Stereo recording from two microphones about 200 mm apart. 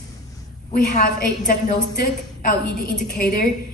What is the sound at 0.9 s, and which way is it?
A woman's voice, 40° left (ahead or behind).